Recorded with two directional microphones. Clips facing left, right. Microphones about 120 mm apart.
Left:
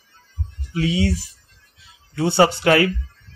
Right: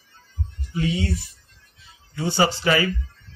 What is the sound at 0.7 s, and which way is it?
Speech, 90° left.